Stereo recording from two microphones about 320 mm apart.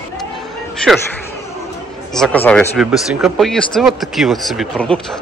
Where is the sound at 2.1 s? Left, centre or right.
Centre.